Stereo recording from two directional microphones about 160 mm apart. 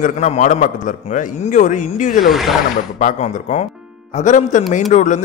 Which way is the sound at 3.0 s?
45° left (ahead or behind).